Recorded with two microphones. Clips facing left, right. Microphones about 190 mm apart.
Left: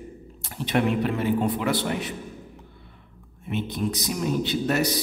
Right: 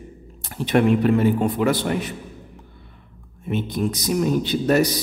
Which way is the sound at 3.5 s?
45° right (ahead or behind).